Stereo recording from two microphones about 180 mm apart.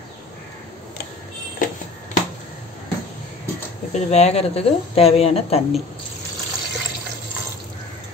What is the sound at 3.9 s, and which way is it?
Speech, 35° left (ahead or behind).